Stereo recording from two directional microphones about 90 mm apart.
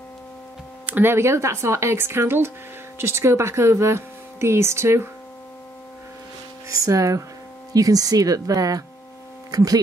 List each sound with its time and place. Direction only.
0.8 s speech: 20° right (ahead or behind)
6.7 s speech: 35° right (ahead or behind)